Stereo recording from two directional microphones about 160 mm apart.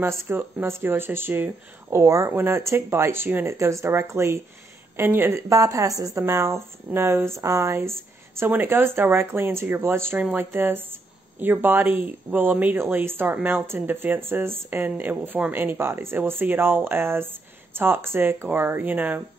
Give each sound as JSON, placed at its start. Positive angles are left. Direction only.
{"t": 0.0, "sound": "speech", "side_deg": -15}